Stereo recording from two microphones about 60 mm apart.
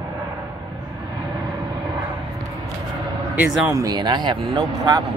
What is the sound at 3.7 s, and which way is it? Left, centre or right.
Speech, right.